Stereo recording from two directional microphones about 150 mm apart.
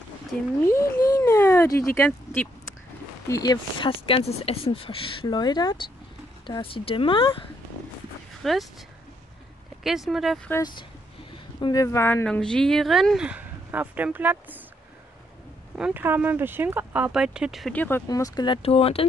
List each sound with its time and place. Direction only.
0.3 s speech: 5° left (ahead or behind)
0.7 s speech: 20° left (ahead or behind)
3.3 s speech: 25° left (ahead or behind)
8.4 s speech: centre (ahead or behind)
9.8 s speech: centre (ahead or behind)
11.6 s speech: 25° left (ahead or behind)
12.3 s speech: 5° left (ahead or behind); by 14.6 s 10° right (ahead or behind)
15.8 s speech: 15° right (ahead or behind)
17.7 s speech: 15° left (ahead or behind); by 19.0 s 40° left (ahead or behind)